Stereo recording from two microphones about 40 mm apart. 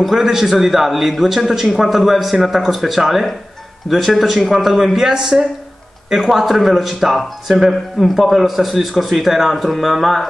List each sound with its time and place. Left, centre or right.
0.0 s a man's voice: centre